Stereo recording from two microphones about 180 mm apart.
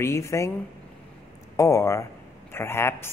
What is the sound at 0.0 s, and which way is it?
Speech, 15° left (ahead or behind).